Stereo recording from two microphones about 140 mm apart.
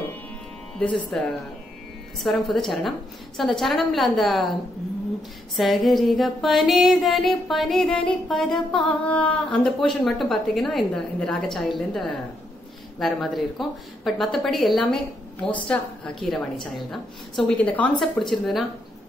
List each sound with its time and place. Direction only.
1.1 s speech: 5° left (ahead or behind)
5.6 s speech: centre (ahead or behind)